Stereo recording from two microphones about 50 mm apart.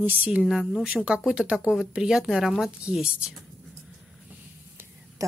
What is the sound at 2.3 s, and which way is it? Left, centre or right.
Speech, centre.